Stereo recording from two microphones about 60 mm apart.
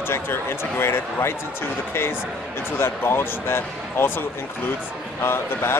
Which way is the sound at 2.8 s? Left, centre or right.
Left.